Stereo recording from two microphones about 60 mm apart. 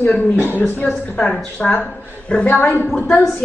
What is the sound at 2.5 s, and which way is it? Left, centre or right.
Speech, left.